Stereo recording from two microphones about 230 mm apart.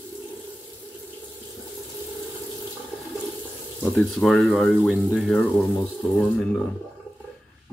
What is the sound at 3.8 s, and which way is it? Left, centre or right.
Speech, centre.